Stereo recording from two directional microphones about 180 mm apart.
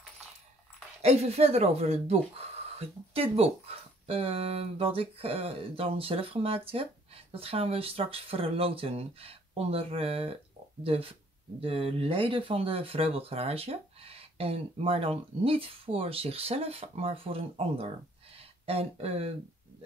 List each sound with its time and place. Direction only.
1.0 s speech: 35° right (ahead or behind)